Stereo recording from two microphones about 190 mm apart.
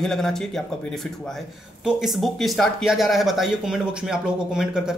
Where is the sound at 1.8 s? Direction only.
Centre (ahead or behind).